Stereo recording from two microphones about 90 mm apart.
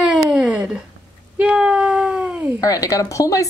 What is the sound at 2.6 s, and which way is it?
Speech, 40° left (ahead or behind).